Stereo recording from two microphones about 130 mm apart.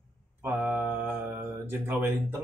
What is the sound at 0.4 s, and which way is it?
Mantra, 15° right (ahead or behind).